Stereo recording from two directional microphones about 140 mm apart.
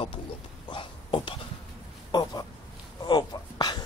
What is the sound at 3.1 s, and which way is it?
Speech, 30° left (ahead or behind).